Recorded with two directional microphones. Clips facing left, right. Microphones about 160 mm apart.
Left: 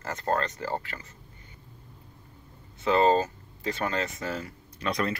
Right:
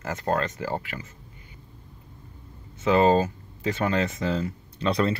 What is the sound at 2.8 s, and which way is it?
Speech, 15° right (ahead or behind).